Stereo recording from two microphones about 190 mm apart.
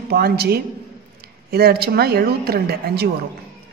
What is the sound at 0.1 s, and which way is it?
Speech, 55° right (ahead or behind).